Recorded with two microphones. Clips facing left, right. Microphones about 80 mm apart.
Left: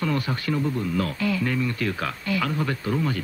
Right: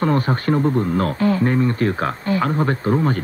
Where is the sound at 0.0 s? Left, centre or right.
Right.